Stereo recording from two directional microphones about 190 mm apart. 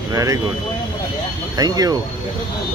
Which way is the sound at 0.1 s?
15° right (ahead or behind).